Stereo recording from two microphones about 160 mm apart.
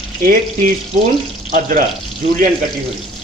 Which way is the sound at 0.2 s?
60° right (ahead or behind).